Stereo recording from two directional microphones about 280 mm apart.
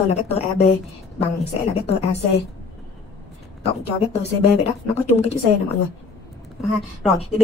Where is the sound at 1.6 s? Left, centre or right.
Left.